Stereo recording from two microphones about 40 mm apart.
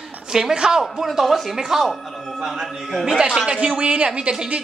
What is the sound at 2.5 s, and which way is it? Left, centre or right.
Speech, centre.